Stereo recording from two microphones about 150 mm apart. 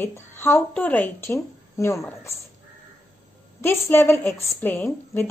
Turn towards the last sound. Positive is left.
turn(degrees=15)  # may be behind; listen again after turning